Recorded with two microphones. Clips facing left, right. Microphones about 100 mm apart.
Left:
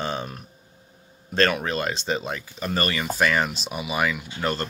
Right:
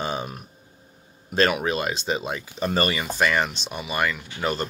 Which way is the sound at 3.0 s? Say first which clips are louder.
Even; centre (ahead or behind).